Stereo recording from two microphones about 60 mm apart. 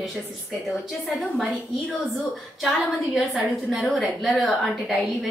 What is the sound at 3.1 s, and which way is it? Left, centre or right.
A woman's voice, centre.